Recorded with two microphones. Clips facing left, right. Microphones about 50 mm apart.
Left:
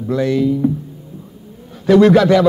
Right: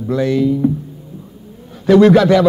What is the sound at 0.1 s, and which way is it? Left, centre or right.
Speech, centre.